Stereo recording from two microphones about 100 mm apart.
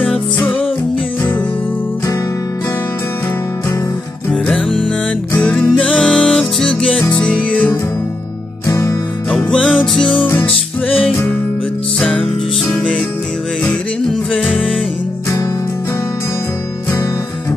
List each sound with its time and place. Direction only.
4.3 s music: 5° left (ahead or behind)
8.6 s music: 30° left (ahead or behind)
9.3 s music: 10° left (ahead or behind)
12.0 s music: 10° left (ahead or behind)